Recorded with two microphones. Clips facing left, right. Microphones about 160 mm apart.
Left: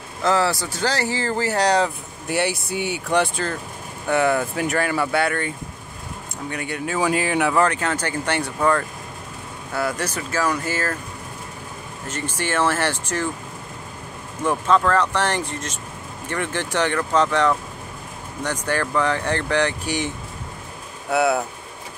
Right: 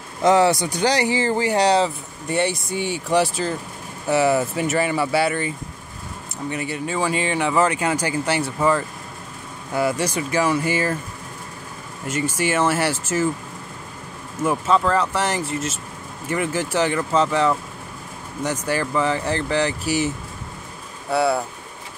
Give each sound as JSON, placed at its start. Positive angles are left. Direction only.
{"t": 0.2, "sound": "speech", "side_deg": -20}
{"t": 2.2, "sound": "speech", "side_deg": 0}
{"t": 7.1, "sound": "speech", "side_deg": 0}
{"t": 12.1, "sound": "speech", "side_deg": -10}
{"t": 14.4, "sound": "speech", "side_deg": -10}
{"t": 21.1, "sound": "speech", "side_deg": 0}